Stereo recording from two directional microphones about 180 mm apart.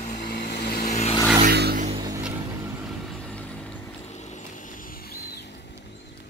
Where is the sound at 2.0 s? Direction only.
20° right (ahead or behind).